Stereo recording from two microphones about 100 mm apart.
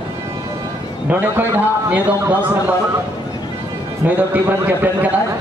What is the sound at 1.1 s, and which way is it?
A man's voice, 20° right (ahead or behind).